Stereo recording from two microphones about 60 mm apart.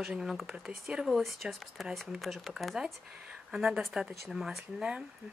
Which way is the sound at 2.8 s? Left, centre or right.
Centre.